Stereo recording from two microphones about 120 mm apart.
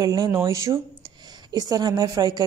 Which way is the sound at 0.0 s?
30° right (ahead or behind).